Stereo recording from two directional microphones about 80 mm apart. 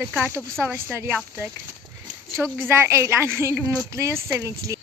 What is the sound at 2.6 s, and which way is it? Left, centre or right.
Speech, right.